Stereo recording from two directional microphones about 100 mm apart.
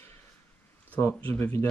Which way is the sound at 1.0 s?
20° left (ahead or behind).